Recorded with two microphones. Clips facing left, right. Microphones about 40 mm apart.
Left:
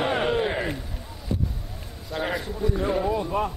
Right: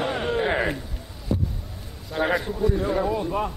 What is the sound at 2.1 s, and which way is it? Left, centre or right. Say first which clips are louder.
Speech: right 5 dB; centre.